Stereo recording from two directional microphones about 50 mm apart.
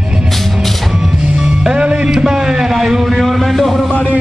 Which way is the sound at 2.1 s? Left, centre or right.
Centre.